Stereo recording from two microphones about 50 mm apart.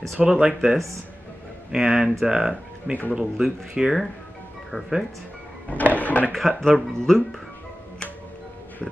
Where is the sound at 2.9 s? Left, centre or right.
Right.